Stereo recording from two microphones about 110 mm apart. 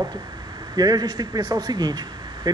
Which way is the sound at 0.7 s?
35° right (ahead or behind).